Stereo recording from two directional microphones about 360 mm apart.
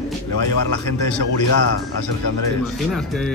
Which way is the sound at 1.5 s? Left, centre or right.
Left.